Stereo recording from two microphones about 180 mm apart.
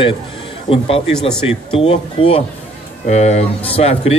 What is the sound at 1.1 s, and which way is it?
Speech, 5° left (ahead or behind).